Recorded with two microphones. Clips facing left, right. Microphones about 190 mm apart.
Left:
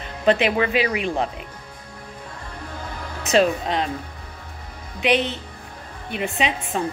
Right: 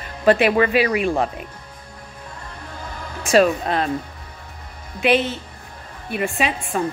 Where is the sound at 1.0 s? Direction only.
15° right (ahead or behind).